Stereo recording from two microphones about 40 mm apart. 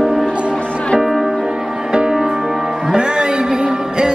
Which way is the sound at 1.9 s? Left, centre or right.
Centre.